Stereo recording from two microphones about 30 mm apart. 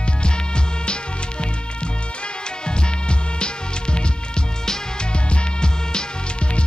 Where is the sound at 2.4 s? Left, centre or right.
Left.